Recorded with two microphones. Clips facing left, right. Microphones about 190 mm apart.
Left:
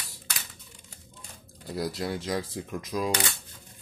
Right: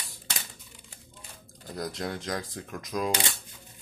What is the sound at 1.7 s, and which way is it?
Speech, 5° left (ahead or behind).